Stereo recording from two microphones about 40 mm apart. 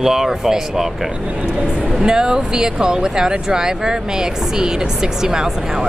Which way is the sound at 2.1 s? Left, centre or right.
Centre.